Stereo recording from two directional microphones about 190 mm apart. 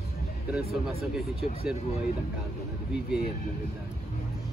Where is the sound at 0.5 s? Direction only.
Centre (ahead or behind).